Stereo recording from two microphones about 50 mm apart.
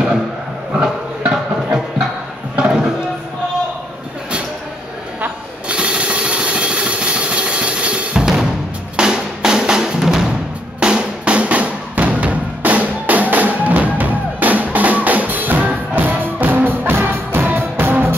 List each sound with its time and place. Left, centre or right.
0.7 s music: centre
2.5 s a sound: centre
5.2 s jackhammer: right
8.9 s drum: centre; by 16.9 s right
17.0 s music: right